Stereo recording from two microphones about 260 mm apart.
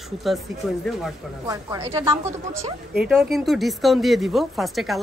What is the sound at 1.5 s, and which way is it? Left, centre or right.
A woman's voice, centre.